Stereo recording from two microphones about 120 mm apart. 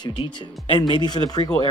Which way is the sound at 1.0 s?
35° left (ahead or behind).